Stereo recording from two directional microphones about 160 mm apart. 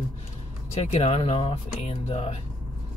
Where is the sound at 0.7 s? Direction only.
40° left (ahead or behind).